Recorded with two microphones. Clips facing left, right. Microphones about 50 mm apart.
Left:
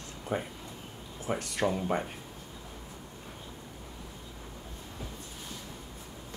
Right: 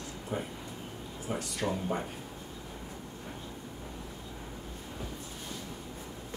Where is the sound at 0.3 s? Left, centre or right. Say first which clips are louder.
Left 3 dB; left.